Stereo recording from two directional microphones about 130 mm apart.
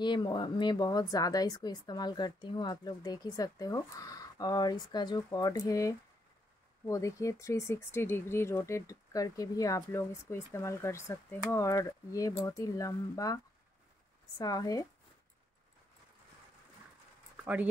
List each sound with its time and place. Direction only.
0.0 s speech: 35° left (ahead or behind)
14.4 s speech: 30° left (ahead or behind)